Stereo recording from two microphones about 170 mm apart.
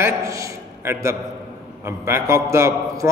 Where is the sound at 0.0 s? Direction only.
20° right (ahead or behind).